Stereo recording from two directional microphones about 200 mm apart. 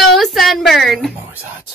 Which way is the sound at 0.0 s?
Centre (ahead or behind).